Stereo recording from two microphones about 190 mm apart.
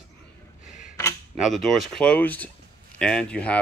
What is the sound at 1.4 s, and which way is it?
Speech, centre (ahead or behind).